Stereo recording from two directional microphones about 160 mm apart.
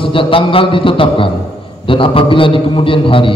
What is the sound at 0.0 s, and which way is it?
A man's voice, 35° left (ahead or behind).